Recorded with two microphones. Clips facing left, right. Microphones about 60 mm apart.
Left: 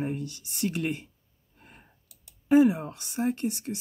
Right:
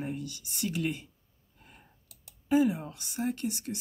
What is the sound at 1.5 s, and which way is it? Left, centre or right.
Clicking, left.